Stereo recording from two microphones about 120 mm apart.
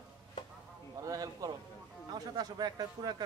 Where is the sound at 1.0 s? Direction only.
30° right (ahead or behind).